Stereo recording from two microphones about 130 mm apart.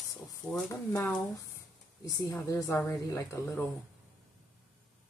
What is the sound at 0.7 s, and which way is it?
Speech, 20° left (ahead or behind).